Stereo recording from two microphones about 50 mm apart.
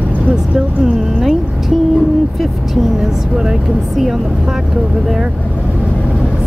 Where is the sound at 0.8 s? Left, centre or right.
Centre.